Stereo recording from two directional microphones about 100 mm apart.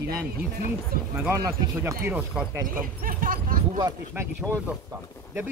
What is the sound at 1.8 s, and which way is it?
Speech, 20° right (ahead or behind).